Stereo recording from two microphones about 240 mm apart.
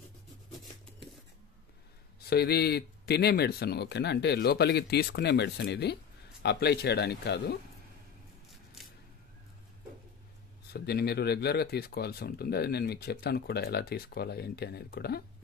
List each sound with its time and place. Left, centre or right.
2.2 s speech: left
10.7 s speech: left